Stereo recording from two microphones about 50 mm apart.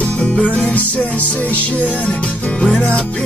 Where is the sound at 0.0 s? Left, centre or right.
Left.